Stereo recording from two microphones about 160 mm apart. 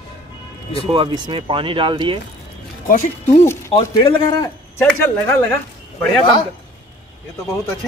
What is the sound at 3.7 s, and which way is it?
Speech, 30° left (ahead or behind).